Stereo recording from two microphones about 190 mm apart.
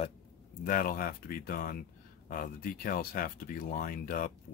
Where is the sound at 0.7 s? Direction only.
45° left (ahead or behind).